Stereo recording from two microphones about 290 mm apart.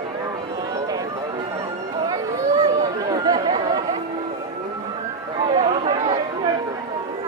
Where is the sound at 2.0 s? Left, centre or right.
Centre.